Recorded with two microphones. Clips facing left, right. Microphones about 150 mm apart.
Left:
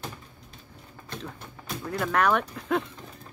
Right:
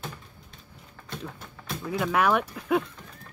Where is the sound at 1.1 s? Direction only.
5° right (ahead or behind).